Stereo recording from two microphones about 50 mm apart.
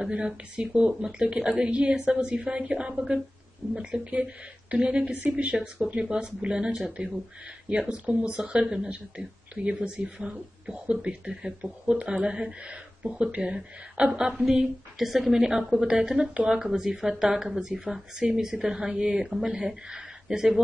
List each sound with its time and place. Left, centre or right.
0.0 s a woman's voice: centre